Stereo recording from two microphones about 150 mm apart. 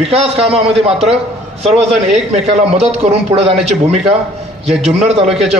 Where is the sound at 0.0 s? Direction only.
40° right (ahead or behind).